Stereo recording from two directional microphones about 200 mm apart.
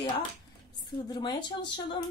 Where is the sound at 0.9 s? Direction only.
20° left (ahead or behind).